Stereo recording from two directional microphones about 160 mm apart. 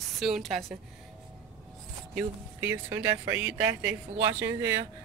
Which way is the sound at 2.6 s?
15° right (ahead or behind).